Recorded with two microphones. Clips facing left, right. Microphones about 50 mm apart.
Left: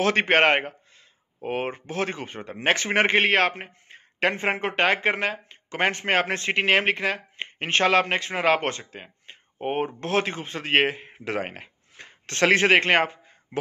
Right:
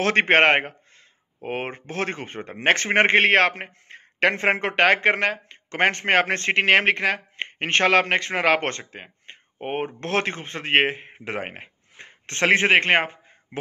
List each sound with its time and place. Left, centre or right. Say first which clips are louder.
0.0 s speech: right 2 dB; right
8.9 s a sound: right 1 dB; right
9.9 s speech: even; right